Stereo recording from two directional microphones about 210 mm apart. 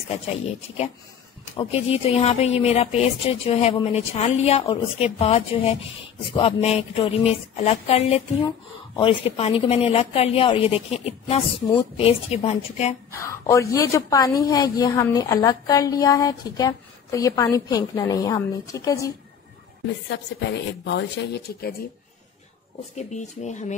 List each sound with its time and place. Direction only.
1.6 s a woman's voice: 30° left (ahead or behind)
13.1 s a woman's voice: 15° left (ahead or behind)
20.1 s speech: 55° left (ahead or behind)
22.9 s a woman's voice: 35° left (ahead or behind)